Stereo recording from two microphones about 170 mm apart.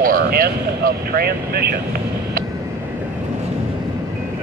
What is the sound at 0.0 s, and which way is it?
Speech, 60° right (ahead or behind).